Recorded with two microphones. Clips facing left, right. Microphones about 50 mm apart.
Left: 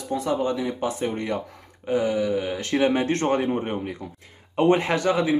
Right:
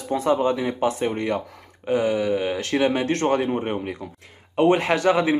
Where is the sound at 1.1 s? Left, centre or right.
Centre.